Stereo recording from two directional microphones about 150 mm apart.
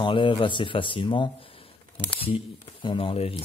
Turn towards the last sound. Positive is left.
turn(degrees=40)  # may be behind; listen again after turning